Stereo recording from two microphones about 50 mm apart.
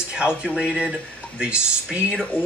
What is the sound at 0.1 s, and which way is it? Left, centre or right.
Speech, centre.